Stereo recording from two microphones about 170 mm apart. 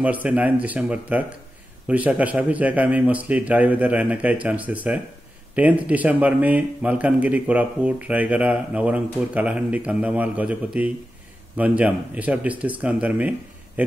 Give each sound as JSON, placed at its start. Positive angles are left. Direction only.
{"t": 0.0, "sound": "speech", "side_deg": -10}